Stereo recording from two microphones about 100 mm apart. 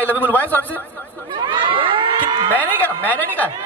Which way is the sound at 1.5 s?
55° right (ahead or behind).